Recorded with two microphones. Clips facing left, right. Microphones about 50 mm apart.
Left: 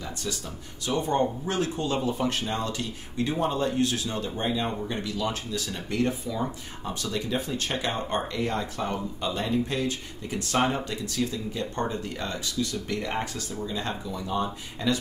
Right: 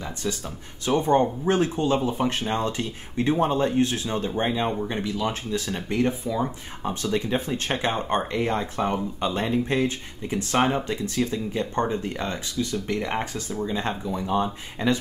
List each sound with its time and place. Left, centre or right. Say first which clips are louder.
0.0 s a sound: right 4 dB; right
0.8 s speech: right 5 dB; right
6.9 s speech: right 5 dB; right